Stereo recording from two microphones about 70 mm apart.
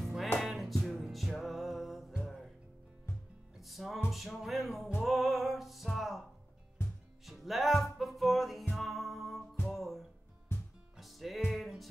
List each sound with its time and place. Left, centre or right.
0.0 s music: centre
3.1 s music: left
3.5 s music: centre
6.8 s music: left
7.2 s music: centre
10.5 s music: left
11.0 s music: centre